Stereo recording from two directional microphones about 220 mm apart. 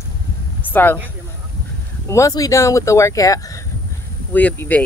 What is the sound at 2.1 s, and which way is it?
Speech, 15° left (ahead or behind).